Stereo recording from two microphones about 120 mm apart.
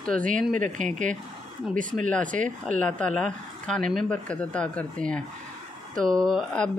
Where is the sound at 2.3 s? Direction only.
90° right.